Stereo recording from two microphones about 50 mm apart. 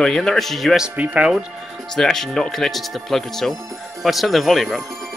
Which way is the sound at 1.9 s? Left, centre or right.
Centre.